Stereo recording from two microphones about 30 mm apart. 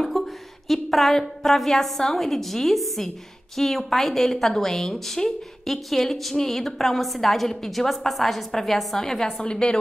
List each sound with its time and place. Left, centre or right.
0.0 s a sound: centre
1.4 s a woman's voice: centre
8.1 s a woman's voice: centre
9.4 s a woman's voice: left